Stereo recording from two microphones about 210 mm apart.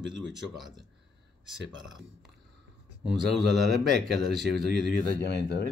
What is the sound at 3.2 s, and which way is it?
A man's voice, 50° right (ahead or behind).